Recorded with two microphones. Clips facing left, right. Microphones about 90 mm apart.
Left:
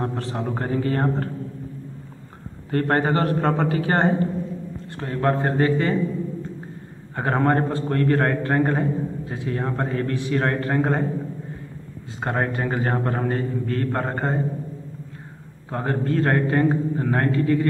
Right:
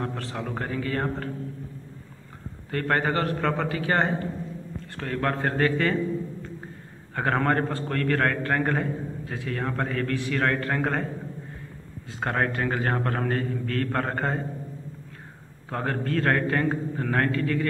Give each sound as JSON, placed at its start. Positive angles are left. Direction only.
{"t": 0.0, "sound": "a man's voice", "side_deg": 25}
{"t": 2.7, "sound": "a man's voice", "side_deg": 35}
{"t": 4.9, "sound": "a man's voice", "side_deg": 20}
{"t": 7.2, "sound": "a man's voice", "side_deg": 15}
{"t": 12.2, "sound": "a man's voice", "side_deg": 15}
{"t": 15.7, "sound": "a man's voice", "side_deg": 15}